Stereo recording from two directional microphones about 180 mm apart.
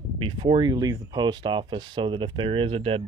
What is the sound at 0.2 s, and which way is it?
Speech, 30° right (ahead or behind).